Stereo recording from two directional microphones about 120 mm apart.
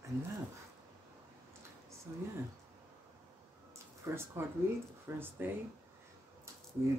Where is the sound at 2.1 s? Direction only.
30° right (ahead or behind).